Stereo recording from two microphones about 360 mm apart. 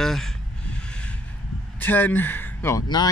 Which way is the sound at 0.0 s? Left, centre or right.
Centre.